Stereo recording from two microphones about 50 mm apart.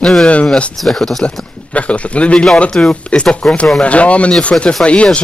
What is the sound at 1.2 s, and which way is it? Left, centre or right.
Speech, left.